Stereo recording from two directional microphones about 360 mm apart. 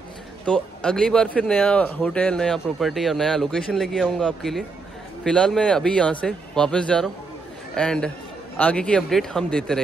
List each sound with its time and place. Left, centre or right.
0.5 s speech: centre